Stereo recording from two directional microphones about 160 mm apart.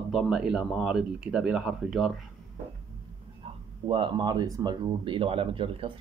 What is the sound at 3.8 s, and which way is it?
Speech, 35° right (ahead or behind).